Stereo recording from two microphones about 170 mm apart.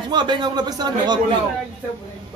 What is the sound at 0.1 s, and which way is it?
Speech, 25° right (ahead or behind).